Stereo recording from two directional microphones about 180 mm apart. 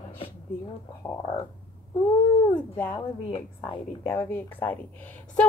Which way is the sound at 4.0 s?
15° left (ahead or behind).